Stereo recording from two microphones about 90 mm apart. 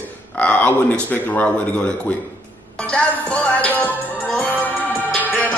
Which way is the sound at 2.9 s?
15° left (ahead or behind).